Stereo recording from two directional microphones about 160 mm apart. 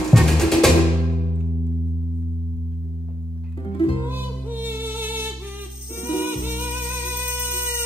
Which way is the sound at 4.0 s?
10° right (ahead or behind).